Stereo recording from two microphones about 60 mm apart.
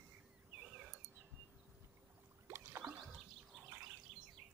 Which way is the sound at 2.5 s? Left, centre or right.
Right.